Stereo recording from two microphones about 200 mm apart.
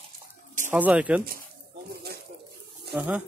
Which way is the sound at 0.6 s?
5° right (ahead or behind).